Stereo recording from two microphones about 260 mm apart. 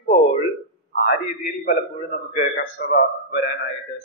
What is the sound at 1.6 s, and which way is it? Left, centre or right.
A man's voice, left.